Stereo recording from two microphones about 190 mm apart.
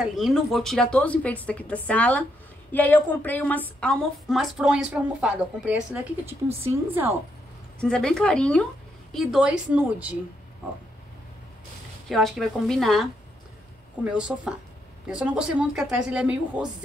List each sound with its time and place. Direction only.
0.0 s a woman's voice: centre (ahead or behind)
7.8 s a woman's voice: 5° left (ahead or behind)
12.1 s a woman's voice: centre (ahead or behind)